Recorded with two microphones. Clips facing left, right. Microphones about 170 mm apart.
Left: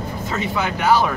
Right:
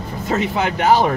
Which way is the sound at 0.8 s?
45° right (ahead or behind).